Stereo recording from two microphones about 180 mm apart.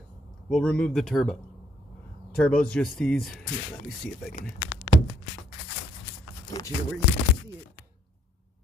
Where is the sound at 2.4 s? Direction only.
5° left (ahead or behind).